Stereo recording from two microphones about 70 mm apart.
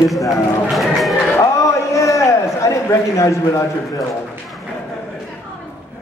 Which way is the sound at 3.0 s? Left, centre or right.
Left.